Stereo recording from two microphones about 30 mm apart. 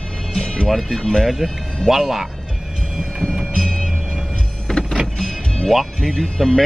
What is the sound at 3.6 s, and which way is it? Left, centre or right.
Train, centre.